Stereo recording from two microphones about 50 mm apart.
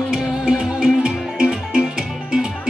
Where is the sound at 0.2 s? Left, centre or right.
Centre.